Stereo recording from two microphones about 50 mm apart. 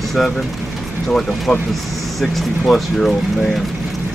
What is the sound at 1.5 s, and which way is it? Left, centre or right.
Speech, centre.